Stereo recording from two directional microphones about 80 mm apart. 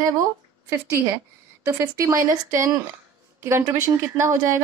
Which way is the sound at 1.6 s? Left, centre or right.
Right.